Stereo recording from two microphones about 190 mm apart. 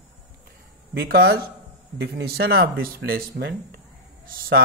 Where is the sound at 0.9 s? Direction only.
55° right (ahead or behind).